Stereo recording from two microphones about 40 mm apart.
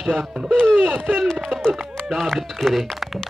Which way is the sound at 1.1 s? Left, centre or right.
Centre.